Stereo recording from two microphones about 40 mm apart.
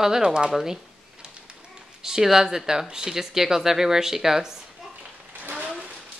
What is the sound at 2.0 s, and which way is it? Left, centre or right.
Speech, centre.